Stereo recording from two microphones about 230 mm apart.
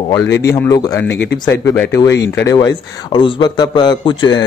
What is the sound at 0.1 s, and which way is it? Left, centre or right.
A man's voice, centre.